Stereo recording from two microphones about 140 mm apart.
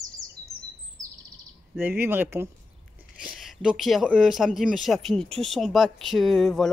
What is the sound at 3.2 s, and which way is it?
Speech, 5° right (ahead or behind).